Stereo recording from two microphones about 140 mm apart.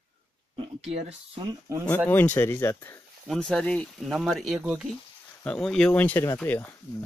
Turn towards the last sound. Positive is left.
turn(degrees=15)  # may be behind; listen again after turning